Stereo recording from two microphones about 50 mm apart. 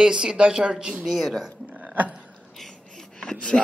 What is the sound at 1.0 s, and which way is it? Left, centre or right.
Speech, centre.